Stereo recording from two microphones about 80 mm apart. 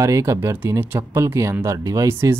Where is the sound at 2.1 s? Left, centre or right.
Right.